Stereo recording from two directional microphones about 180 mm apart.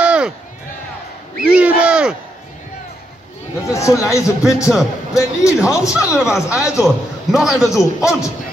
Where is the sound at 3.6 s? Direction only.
15° left (ahead or behind).